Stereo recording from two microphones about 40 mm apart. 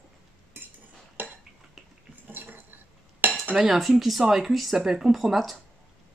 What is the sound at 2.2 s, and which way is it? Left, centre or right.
Dishes, right.